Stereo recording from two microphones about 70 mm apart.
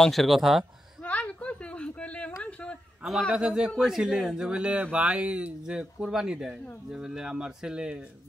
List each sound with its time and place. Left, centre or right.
0.0 s speech: centre
1.0 s a sound: centre
3.3 s speech: centre
4.5 s speech: centre